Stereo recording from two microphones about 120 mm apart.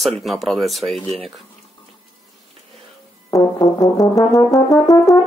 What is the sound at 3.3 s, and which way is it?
Brass instrument, 30° left (ahead or behind).